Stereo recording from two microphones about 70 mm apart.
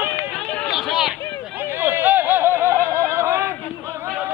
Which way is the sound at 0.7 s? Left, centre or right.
Centre.